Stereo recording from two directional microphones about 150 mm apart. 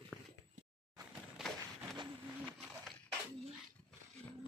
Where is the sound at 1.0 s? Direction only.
25° right (ahead or behind).